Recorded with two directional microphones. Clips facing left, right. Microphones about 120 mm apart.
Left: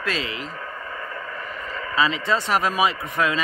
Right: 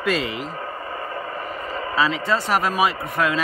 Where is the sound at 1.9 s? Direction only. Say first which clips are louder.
Even; 5° right (ahead or behind).